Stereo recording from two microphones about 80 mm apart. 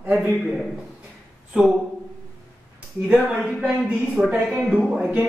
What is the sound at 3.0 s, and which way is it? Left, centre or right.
Speech, centre.